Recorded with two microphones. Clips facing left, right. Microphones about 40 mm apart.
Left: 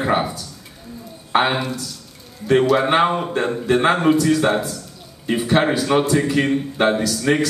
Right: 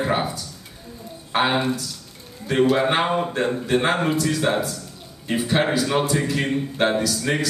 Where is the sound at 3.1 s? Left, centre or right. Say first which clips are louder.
Left 1 dB; centre.